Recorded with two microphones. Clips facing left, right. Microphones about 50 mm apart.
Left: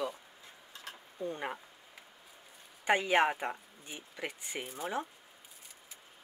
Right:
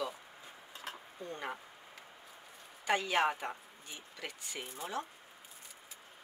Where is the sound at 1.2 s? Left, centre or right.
Centre.